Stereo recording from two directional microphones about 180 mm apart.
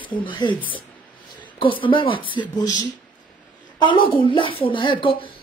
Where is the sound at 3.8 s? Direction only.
25° left (ahead or behind).